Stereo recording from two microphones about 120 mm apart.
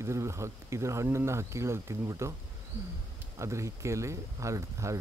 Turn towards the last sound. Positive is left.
turn(degrees=-25)  # may be behind; listen again after turning